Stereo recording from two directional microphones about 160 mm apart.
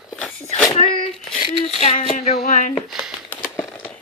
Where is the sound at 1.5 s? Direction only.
40° left (ahead or behind).